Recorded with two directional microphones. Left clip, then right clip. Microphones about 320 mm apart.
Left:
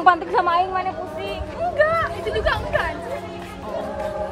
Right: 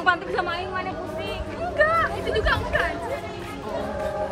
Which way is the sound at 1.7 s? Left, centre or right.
Left.